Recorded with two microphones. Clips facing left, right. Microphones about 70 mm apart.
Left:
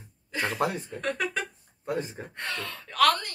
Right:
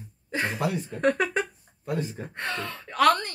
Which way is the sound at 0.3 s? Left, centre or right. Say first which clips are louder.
Right 2 dB; right.